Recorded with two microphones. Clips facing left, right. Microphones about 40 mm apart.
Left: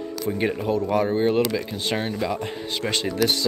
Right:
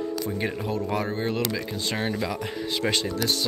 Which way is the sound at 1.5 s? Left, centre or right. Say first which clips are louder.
Left 3 dB; centre.